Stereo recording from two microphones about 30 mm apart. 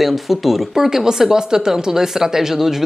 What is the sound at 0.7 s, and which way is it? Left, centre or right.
Speech, centre.